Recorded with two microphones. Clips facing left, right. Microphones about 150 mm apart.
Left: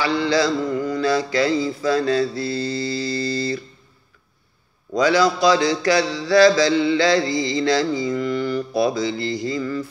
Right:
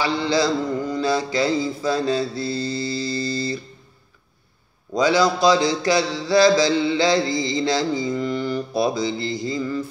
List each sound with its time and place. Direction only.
0.0 s mantra: 20° right (ahead or behind)
4.9 s mantra: 25° right (ahead or behind)